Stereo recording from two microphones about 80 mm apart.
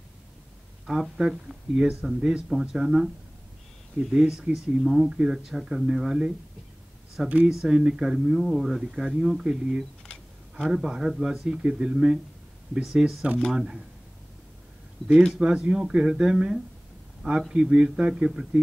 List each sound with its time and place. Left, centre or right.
0.8 s speech: centre
4.1 s speech: centre
15.1 s speech: centre